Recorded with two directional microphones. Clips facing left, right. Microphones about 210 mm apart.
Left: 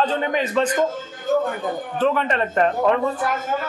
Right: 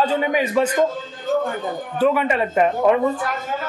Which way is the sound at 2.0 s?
10° right (ahead or behind).